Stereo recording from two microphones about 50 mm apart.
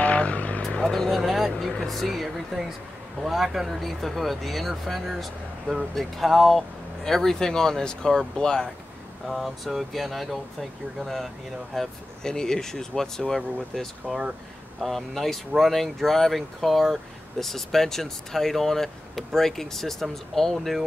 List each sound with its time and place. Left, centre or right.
0.0 s vehicle: left
0.6 s speech: centre
9.3 s speech: centre
14.0 s speech: centre
14.8 s speech: centre